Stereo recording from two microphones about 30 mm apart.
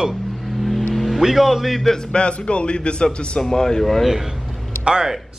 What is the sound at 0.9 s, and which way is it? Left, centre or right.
Vehicle, centre.